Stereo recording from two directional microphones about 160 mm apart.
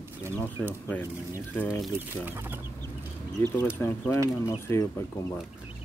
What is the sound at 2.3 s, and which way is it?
Speech, 15° right (ahead or behind).